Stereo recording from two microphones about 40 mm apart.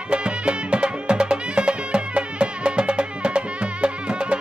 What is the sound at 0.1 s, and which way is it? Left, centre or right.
Music, right.